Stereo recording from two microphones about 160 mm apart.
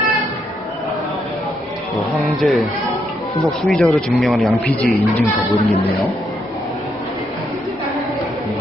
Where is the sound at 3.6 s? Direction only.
5° left (ahead or behind).